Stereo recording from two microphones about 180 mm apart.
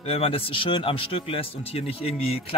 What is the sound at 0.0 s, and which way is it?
A man's voice, 35° left (ahead or behind).